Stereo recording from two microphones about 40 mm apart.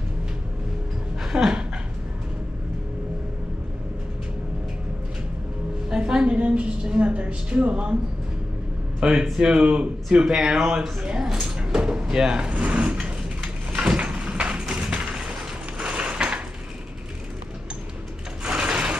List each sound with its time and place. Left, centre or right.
1.2 s dog: centre
5.9 s a sound: right
9.0 s speech: centre
11.6 s drawer open or close: right
13.0 s a sound: right
15.8 s mechanisms: right
18.4 s sewing machine: right